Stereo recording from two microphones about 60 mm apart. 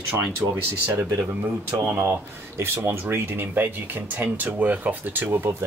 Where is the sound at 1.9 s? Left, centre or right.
Right.